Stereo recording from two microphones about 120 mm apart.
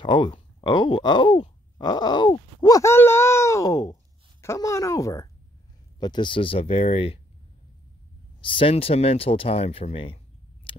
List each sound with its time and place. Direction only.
0.0 s speech: 40° left (ahead or behind)
2.7 s speech: 20° left (ahead or behind)
5.9 s speech: 40° left (ahead or behind); by 7.2 s 55° left (ahead or behind)
8.4 s speech: 45° left (ahead or behind)